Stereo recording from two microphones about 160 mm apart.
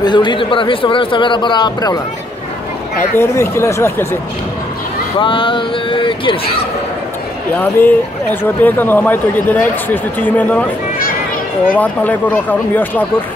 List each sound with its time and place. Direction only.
0.0 s speech: 30° left (ahead or behind)
3.2 s speech: 15° left (ahead or behind)
5.2 s speech: 30° left (ahead or behind)
7.5 s speech: 10° left (ahead or behind)
11.7 s speech: 10° left (ahead or behind)